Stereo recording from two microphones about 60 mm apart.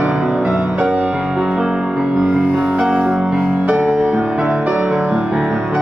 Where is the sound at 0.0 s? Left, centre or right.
Centre.